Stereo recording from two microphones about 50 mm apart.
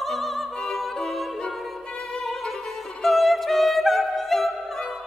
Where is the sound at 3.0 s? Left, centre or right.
Centre.